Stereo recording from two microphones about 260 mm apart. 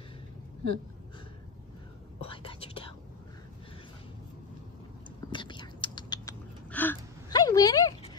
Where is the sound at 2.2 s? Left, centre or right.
Left.